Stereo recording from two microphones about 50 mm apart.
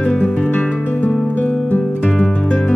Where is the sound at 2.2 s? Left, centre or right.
Left.